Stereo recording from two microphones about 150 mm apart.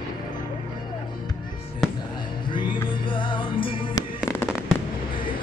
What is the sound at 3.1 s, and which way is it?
Music, 30° left (ahead or behind).